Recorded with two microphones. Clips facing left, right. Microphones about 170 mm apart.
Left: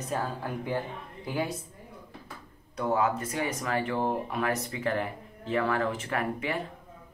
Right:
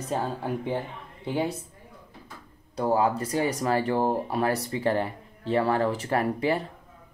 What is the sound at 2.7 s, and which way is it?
Speech, 35° right (ahead or behind).